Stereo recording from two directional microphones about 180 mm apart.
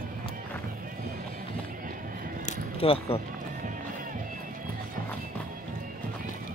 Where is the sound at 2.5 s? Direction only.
30° left (ahead or behind).